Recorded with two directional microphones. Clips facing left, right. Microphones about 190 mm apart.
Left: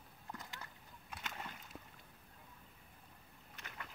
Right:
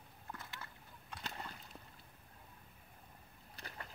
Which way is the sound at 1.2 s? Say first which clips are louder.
Right 1 dB; 35° right (ahead or behind).